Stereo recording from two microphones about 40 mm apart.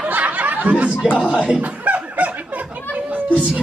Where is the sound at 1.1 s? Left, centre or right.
Right.